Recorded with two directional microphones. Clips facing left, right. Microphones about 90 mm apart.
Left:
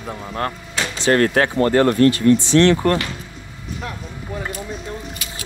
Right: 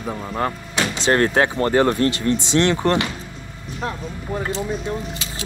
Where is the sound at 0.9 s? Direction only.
20° right (ahead or behind).